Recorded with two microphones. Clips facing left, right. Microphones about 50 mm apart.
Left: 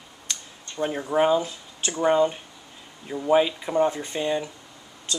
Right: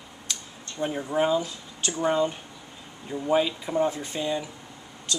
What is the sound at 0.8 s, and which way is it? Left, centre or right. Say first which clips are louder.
Speech: left 3 dB; centre.